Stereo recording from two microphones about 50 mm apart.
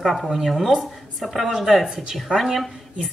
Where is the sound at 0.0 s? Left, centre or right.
Centre.